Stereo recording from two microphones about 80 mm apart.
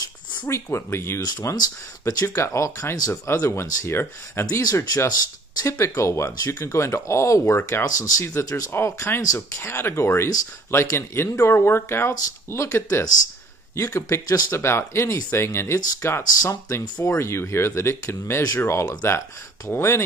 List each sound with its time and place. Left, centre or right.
0.5 s speech: left
4.6 s speech: left
5.8 s speech: left
8.4 s speech: left
8.7 s speech: left
14.2 s speech: left
14.5 s speech: left